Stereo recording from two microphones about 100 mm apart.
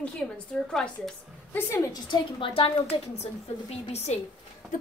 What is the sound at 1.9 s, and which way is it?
A woman's voice, 55° left (ahead or behind).